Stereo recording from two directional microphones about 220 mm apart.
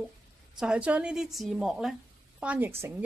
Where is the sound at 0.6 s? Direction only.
5° right (ahead or behind).